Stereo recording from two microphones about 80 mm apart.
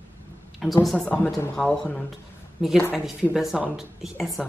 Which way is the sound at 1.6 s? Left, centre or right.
Centre.